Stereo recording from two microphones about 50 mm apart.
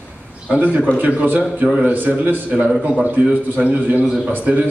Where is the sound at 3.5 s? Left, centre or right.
Right.